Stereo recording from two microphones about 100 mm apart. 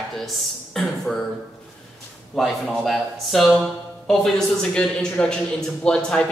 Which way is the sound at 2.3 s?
5° left (ahead or behind).